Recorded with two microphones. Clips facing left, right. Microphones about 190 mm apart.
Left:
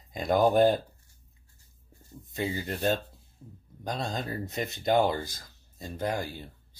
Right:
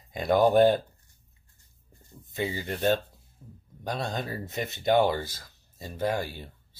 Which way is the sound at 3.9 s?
60° right (ahead or behind).